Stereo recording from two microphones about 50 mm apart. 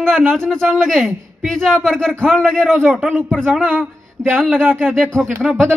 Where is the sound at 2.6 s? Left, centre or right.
Centre.